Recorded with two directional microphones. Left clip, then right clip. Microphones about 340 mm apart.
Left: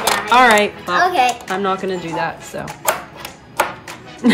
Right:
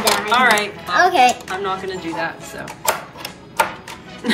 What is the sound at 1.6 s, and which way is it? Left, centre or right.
Speech, centre.